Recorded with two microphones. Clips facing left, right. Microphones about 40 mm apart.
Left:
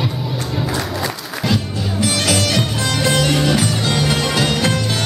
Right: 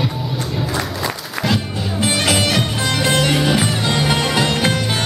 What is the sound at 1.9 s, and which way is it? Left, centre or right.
Music, right.